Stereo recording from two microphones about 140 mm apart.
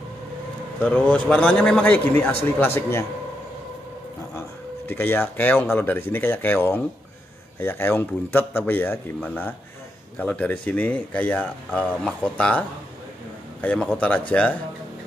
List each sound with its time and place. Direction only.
0.8 s speech: 10° left (ahead or behind)
4.4 s speech: 15° left (ahead or behind)